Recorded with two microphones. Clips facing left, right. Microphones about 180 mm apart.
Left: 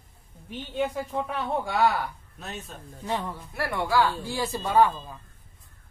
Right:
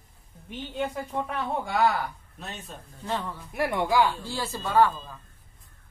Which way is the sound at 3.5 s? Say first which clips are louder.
Right 2 dB; 15° right (ahead or behind).